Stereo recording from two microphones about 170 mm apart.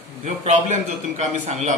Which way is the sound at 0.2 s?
40° right (ahead or behind).